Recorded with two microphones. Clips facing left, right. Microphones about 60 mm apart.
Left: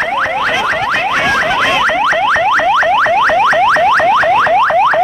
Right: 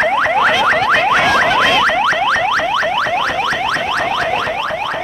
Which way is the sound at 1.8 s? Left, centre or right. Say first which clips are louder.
Left 2 dB; centre.